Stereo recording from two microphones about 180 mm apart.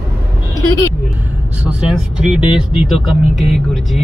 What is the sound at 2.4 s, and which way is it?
Speech, 30° left (ahead or behind).